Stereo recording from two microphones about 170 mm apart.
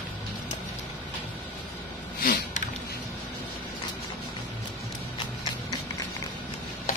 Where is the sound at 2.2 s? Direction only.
55° left (ahead or behind).